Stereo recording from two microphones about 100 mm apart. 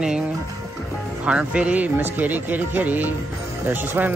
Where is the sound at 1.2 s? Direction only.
10° right (ahead or behind).